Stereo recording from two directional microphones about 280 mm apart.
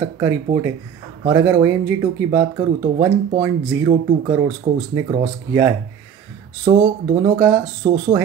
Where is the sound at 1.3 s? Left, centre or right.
Centre.